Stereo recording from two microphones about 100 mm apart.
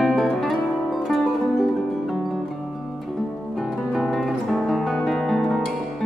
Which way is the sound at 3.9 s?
Centre (ahead or behind).